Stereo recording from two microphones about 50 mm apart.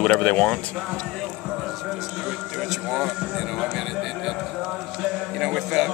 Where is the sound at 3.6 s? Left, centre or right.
Centre.